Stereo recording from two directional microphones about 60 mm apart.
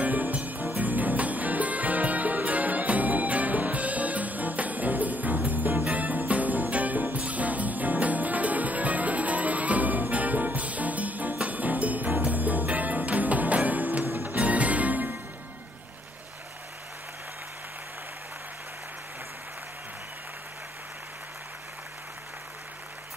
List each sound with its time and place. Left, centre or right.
0.0 s music: right